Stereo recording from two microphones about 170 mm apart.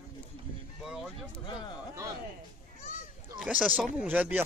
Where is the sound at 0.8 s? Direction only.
5° right (ahead or behind).